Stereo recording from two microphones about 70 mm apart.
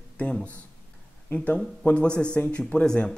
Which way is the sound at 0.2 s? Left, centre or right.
Centre.